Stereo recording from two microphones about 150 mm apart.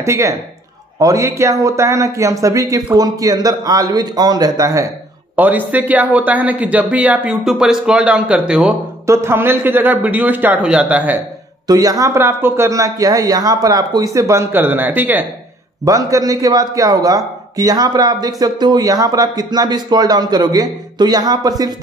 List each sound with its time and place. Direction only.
0.0 s a man's voice: 20° right (ahead or behind)
9.0 s speech: 15° right (ahead or behind)
11.6 s a man's voice: 25° right (ahead or behind)
15.8 s a man's voice: 20° right (ahead or behind)